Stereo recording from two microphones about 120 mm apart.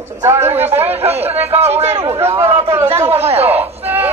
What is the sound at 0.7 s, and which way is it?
A man's voice, 60° right (ahead or behind).